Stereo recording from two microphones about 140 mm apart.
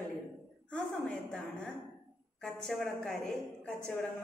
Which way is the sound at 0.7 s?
5° left (ahead or behind).